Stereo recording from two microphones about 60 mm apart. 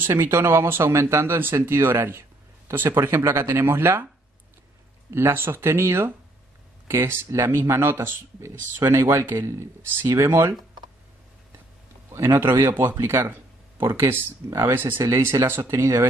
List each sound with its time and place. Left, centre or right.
0.0 s speech: right
5.1 s speech: right
12.1 s speech: right
15.0 s speech: right